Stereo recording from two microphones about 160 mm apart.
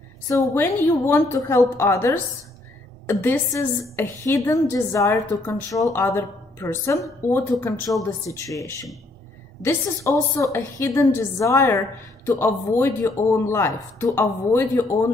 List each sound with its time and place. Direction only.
0.3 s a woman's voice: 20° left (ahead or behind)